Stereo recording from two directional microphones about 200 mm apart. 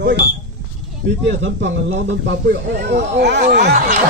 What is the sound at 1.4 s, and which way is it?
Speech, 70° right (ahead or behind).